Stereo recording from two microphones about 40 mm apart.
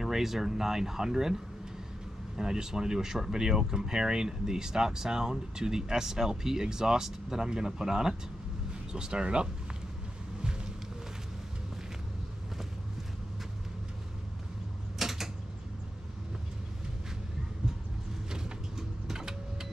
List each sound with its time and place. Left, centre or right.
0.0 s speech: centre; by 9.5 s right
15.0 s mechanisms: centre
18.3 s mechanisms: centre